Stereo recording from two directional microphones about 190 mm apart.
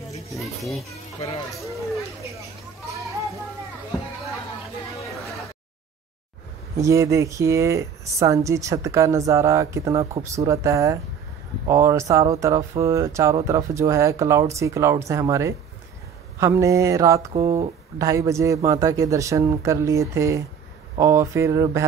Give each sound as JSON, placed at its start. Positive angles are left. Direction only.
{"t": 6.8, "sound": "speech", "side_deg": -15}
{"t": 17.3, "sound": "speech", "side_deg": -30}
{"t": 17.9, "sound": "speech", "side_deg": -15}